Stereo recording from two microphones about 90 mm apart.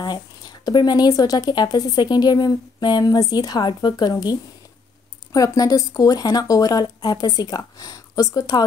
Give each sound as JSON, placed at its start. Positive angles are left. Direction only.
{"t": 0.0, "sound": "speech", "side_deg": 50}